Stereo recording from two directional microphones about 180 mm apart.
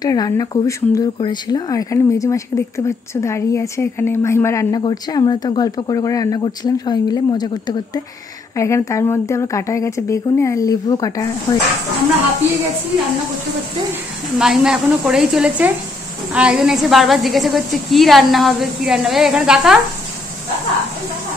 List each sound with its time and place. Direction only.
0.0 s speech: 20° left (ahead or behind)
14.4 s a woman's voice: 5° right (ahead or behind)